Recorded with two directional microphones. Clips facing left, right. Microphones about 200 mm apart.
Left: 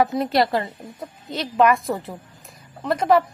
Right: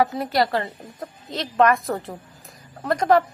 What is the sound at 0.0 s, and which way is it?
Speech, 25° left (ahead or behind).